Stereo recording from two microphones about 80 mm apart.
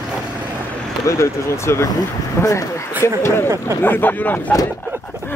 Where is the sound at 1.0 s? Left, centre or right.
Left.